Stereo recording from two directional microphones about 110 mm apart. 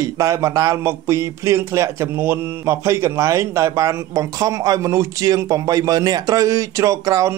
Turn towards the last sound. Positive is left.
turn(degrees=-30)  # may be behind; listen again after turning